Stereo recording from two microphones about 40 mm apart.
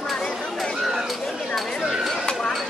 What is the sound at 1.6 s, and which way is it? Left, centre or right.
Chatter, centre.